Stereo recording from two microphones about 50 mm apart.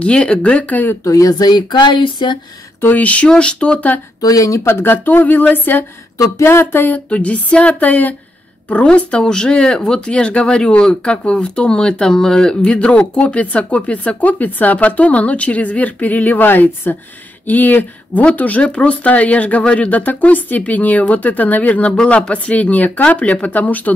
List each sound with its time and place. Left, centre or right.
0.0 s speech: left
2.8 s speech: left
4.6 s speech: left
6.1 s speech: left
6.4 s speech: left
8.8 s speech: centre
21.9 s speech: left